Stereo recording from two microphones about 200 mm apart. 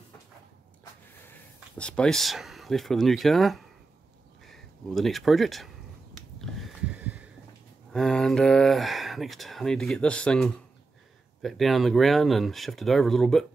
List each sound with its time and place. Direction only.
1.2 s speech: 5° left (ahead or behind)
6.4 s heart sounds: 5° right (ahead or behind)
7.9 s speech: 5° left (ahead or behind)